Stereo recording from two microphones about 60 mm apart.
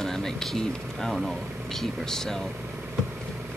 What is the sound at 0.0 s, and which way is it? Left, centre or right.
Speech, centre.